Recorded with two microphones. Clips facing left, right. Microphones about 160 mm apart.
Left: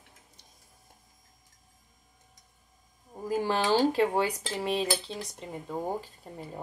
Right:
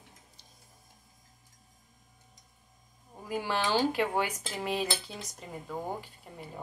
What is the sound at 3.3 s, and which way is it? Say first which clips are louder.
Cutlery: left 4 dB; 40° left (ahead or behind).